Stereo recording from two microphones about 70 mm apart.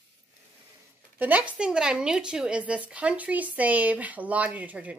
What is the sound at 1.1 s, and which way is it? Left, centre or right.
Speech, right.